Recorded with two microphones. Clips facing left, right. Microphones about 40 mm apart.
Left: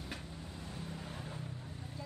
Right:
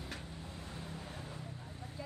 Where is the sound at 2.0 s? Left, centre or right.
Centre.